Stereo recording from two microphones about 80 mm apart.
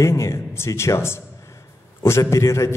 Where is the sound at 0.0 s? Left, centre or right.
Left.